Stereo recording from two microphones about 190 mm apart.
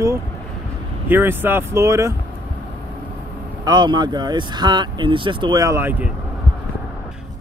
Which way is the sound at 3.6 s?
20° right (ahead or behind).